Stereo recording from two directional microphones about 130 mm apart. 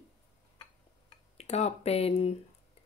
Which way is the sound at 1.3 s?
55° left (ahead or behind).